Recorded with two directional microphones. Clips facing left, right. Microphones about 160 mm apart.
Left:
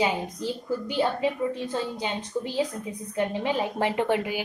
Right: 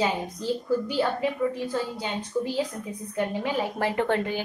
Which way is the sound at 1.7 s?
20° left (ahead or behind).